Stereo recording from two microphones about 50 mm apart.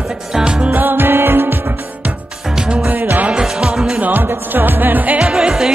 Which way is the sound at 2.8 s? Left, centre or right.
Right.